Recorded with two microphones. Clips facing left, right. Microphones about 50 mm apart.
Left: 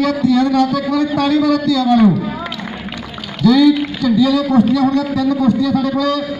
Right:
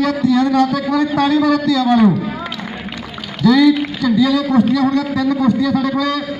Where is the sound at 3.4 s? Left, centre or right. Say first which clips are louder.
Left 1 dB; centre.